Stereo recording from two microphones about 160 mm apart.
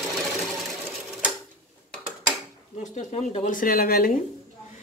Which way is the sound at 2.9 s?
45° left (ahead or behind).